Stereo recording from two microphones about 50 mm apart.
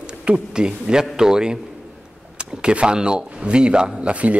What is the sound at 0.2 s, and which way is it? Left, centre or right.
A man's voice, right.